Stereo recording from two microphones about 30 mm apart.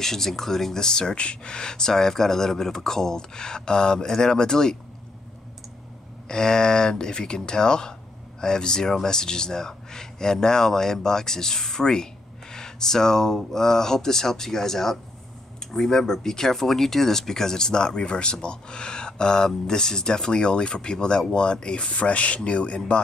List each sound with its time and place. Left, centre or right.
0.0 s speech: centre
0.7 s speech: left
6.2 s speech: left